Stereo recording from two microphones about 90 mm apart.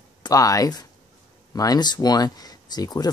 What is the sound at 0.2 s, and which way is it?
Speech, 40° left (ahead or behind).